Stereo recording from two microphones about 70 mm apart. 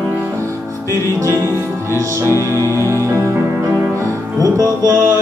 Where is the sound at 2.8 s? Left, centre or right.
Right.